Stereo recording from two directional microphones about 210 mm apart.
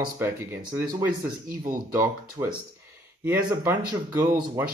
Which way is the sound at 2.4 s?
20° right (ahead or behind).